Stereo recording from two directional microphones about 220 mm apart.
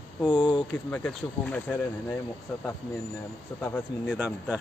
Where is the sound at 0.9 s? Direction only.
10° left (ahead or behind).